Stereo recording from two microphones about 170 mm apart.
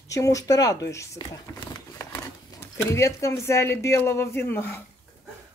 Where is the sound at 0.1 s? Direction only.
20° left (ahead or behind).